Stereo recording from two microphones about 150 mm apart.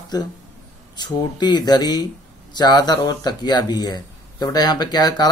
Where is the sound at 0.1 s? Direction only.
25° left (ahead or behind).